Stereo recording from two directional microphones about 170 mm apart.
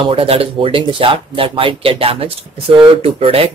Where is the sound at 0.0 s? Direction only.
35° right (ahead or behind).